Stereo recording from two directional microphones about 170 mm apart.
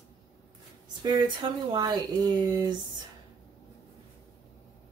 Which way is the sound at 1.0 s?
25° right (ahead or behind).